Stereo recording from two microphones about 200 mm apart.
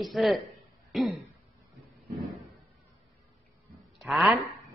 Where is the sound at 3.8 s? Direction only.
Centre (ahead or behind).